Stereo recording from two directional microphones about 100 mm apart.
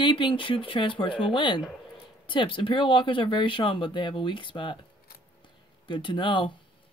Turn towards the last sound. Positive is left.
turn(degrees=55)  # may be behind; listen again after turning